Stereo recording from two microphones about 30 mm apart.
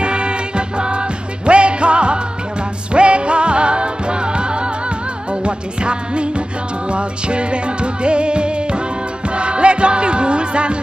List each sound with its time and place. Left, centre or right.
0.0 s music: right